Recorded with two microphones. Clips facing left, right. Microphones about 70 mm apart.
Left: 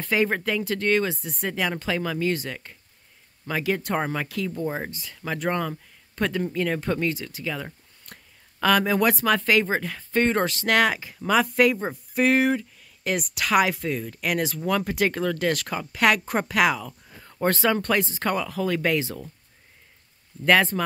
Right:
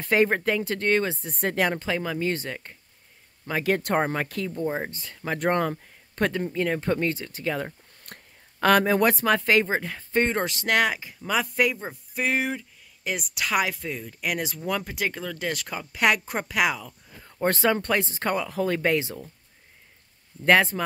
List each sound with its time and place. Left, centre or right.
0.1 s speech: right
1.4 s speech: right
1.7 s speech: right
3.6 s speech: right
4.0 s speech: right
6.4 s speech: centre
17.4 s speech: right
20.4 s speech: centre